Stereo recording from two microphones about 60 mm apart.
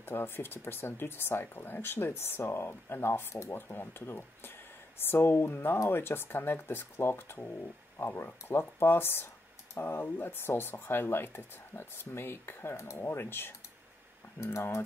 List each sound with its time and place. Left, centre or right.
0.0 s speech: left